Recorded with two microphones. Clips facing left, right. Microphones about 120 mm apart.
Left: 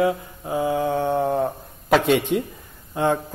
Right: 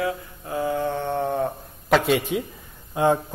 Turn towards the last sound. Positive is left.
turn(degrees=-15)  # may be behind; listen again after turning